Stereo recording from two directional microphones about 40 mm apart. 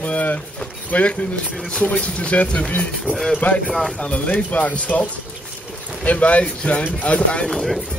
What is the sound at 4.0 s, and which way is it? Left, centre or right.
Speech, left.